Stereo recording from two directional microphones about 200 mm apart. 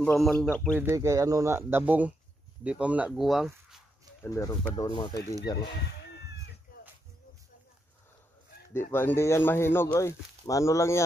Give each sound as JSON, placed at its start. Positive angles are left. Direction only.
{"t": 0.0, "sound": "speech", "side_deg": 5}
{"t": 0.7, "sound": "speech", "side_deg": -10}
{"t": 4.2, "sound": "speech", "side_deg": 15}
{"t": 8.7, "sound": "speech", "side_deg": 10}